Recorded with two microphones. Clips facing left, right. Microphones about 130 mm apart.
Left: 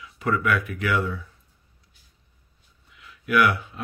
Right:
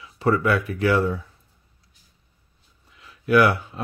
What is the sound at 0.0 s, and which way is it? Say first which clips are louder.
Speech: right 4 dB; 30° right (ahead or behind).